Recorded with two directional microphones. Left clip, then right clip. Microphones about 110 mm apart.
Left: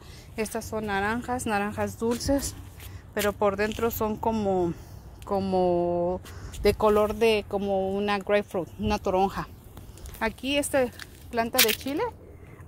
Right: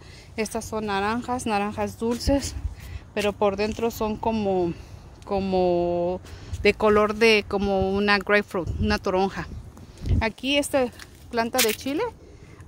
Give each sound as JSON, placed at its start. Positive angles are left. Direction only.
{"t": 0.4, "sound": "a woman's voice", "side_deg": -30}
{"t": 1.9, "sound": "speech", "side_deg": -15}
{"t": 3.3, "sound": "speech", "side_deg": -30}
{"t": 4.0, "sound": "speech", "side_deg": -15}
{"t": 6.8, "sound": "speech", "side_deg": -35}
{"t": 8.1, "sound": "speech", "side_deg": -35}
{"t": 11.9, "sound": "speech", "side_deg": -50}